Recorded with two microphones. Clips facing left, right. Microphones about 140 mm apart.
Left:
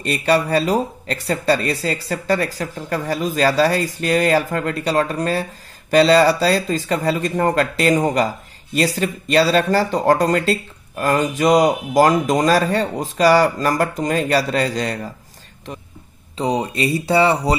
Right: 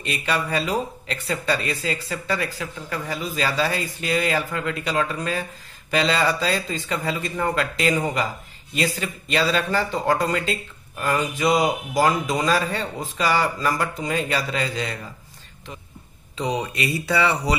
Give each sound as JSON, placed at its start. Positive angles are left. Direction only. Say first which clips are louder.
{"t": 0.0, "sound": "speech", "louder": "left 8 dB", "side_deg": 40}
{"t": 16.3, "sound": "speech", "louder": "left 5 dB", "side_deg": 35}